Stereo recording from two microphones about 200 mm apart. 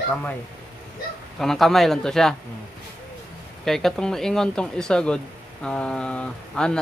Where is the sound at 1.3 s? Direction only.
Centre (ahead or behind).